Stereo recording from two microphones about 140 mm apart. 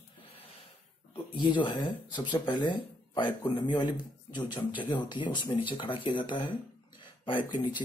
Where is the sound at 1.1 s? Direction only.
35° left (ahead or behind).